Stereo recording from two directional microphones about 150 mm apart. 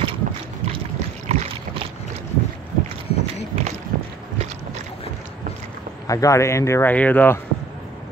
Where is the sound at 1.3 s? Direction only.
45° right (ahead or behind).